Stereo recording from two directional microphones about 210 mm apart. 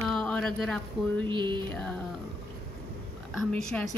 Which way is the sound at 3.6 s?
5° left (ahead or behind).